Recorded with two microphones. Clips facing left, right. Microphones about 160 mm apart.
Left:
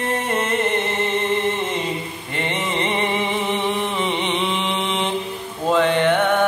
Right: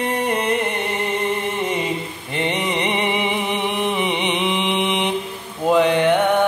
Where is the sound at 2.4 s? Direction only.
15° right (ahead or behind).